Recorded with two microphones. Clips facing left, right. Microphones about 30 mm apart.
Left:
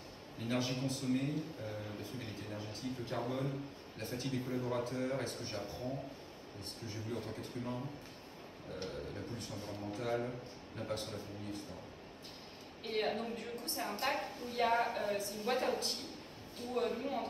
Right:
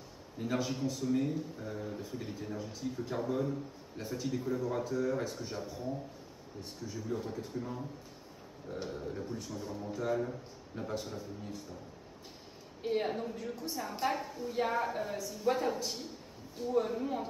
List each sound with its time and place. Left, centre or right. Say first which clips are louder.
0.4 s a woman's voice: right 3 dB; left
8.7 s a woman's voice: right 4 dB; left
12.8 s speech: right 3 dB; left
13.3 s a woman's voice: right 2 dB; left
17.0 s speech: right 3 dB; left